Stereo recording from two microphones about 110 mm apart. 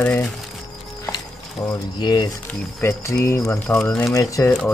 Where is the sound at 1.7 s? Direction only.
40° left (ahead or behind).